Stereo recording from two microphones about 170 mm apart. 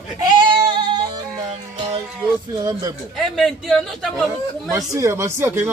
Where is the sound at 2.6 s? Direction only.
20° right (ahead or behind).